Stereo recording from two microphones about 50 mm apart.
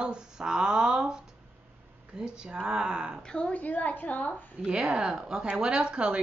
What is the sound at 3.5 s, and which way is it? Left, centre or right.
Speech, left.